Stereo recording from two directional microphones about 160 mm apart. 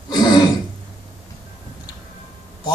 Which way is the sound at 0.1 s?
25° left (ahead or behind).